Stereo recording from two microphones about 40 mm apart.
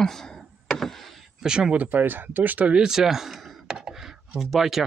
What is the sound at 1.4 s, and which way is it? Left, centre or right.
Speech, centre.